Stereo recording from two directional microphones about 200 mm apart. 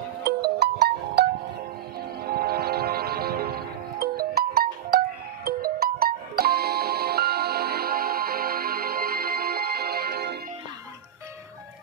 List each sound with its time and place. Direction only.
0.2 s music: 55° right (ahead or behind)